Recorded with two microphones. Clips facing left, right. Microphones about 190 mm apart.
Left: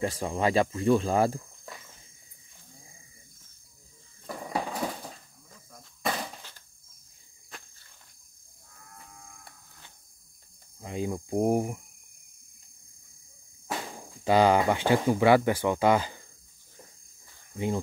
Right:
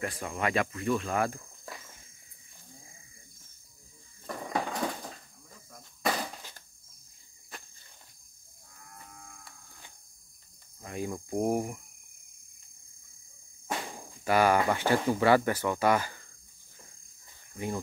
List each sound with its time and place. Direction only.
0.0 s speech: 30° left (ahead or behind)
4.3 s a sound: 5° left (ahead or behind)
10.8 s cricket: 20° left (ahead or behind)
14.2 s speech: 20° left (ahead or behind)